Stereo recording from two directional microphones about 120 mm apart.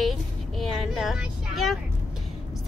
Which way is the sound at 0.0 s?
Centre (ahead or behind).